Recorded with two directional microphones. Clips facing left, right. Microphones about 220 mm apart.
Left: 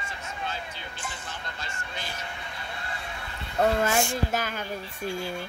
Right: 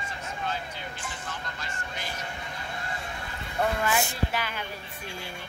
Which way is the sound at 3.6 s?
40° left (ahead or behind).